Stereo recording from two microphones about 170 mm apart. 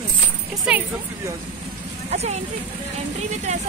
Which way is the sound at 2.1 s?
40° right (ahead or behind).